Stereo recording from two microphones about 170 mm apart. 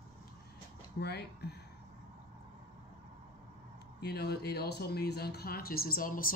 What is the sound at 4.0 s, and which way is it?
Speech, 70° left (ahead or behind).